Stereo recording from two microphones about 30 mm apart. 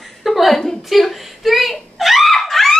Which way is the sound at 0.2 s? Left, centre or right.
Centre.